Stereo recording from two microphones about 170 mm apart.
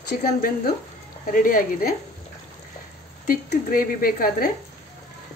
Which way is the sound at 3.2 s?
60° left (ahead or behind).